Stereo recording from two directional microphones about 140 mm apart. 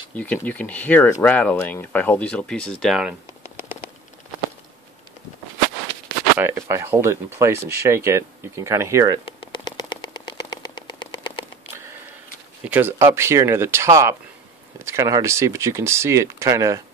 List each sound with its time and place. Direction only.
0.1 s speech: 10° left (ahead or behind)
6.3 s speech: 20° right (ahead or behind)
9.4 s a sound: 35° left (ahead or behind)
12.6 s speech: 15° right (ahead or behind)